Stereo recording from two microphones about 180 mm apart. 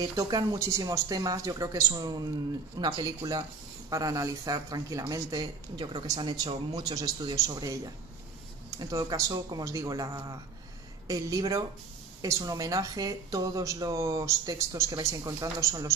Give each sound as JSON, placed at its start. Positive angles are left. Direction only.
{"t": 0.0, "sound": "speech", "side_deg": -20}